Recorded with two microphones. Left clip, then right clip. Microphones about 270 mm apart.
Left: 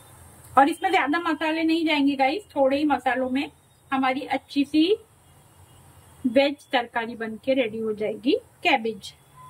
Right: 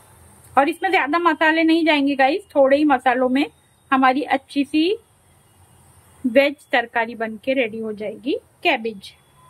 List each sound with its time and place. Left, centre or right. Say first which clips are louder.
0.6 s a woman's voice: right 2 dB; centre
6.3 s a woman's voice: right 5 dB; centre